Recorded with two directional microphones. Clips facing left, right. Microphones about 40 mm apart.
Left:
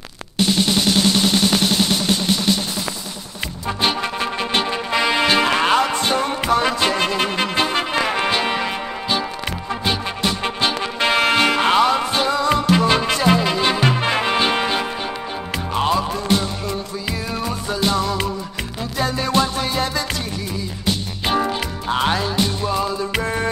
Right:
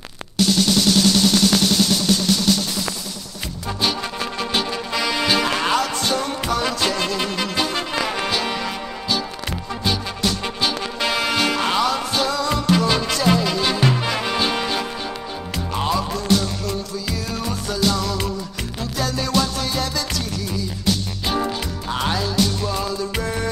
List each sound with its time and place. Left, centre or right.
0.4 s music: left
3.6 s music: left